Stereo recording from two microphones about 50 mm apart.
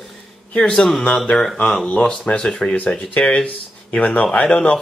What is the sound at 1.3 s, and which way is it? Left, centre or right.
Speech, centre.